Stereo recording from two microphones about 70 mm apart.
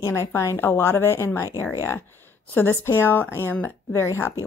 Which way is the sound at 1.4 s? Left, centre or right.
Left.